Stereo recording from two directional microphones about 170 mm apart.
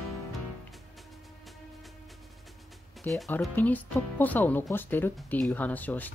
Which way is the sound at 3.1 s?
Centre (ahead or behind).